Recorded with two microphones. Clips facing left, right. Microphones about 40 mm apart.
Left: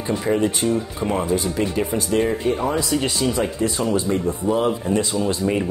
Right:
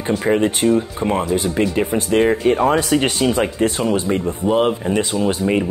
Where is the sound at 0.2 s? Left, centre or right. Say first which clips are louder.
Right 4 dB; right.